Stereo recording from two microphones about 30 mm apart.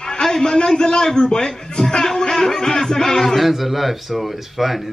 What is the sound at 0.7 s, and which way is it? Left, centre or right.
A man's voice, left.